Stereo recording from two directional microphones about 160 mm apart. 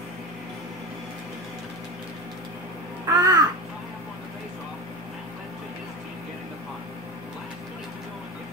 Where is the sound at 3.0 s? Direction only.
25° right (ahead or behind).